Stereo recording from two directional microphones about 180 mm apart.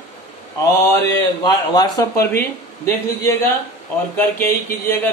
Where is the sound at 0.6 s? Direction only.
20° left (ahead or behind).